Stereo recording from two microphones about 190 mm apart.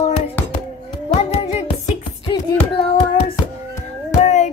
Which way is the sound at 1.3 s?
30° left (ahead or behind).